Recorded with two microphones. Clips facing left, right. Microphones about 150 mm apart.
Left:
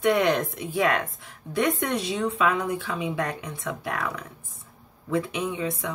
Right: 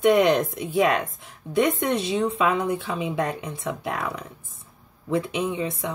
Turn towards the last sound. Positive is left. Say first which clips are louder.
# right 2 dB
turn(degrees=-25)  # may be behind; listen again after turning